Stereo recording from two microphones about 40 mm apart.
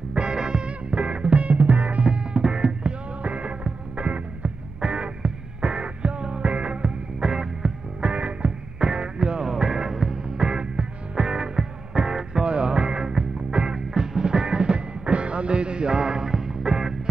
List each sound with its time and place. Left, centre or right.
0.1 s music: centre
4.8 s music: right